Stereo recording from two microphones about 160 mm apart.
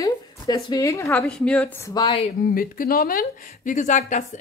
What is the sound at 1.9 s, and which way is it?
Speech, 30° left (ahead or behind).